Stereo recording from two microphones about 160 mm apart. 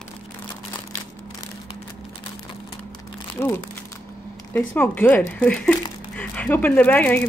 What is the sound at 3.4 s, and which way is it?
Speech, 15° left (ahead or behind).